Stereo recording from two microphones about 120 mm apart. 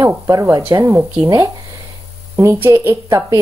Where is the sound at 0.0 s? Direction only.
25° right (ahead or behind).